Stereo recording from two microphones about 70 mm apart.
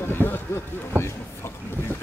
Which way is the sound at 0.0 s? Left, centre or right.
Left.